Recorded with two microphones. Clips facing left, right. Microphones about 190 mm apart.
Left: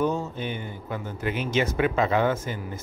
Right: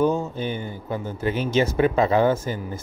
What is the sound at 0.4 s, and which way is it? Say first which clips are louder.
Speech: right 4 dB; 35° right (ahead or behind).